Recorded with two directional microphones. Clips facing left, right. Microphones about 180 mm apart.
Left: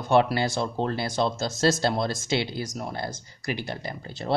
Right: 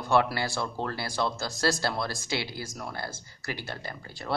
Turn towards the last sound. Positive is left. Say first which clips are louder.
# left 5 dB
turn(degrees=15)  # may be behind; listen again after turning